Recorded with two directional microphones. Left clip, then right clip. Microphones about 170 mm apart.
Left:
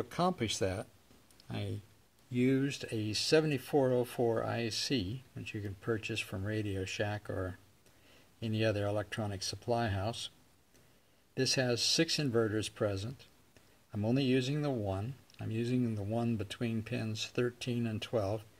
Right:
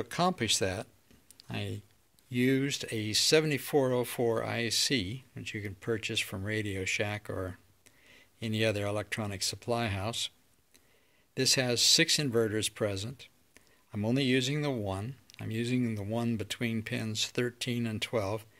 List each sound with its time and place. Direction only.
0.0 s speech: 15° right (ahead or behind)
11.3 s speech: 15° right (ahead or behind)